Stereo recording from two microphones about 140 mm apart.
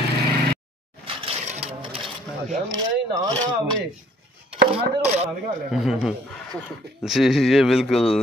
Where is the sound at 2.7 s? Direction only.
30° right (ahead or behind).